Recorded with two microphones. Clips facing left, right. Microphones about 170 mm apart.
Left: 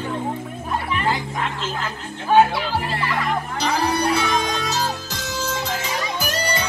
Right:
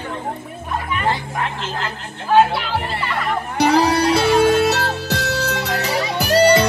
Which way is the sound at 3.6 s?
70° right (ahead or behind).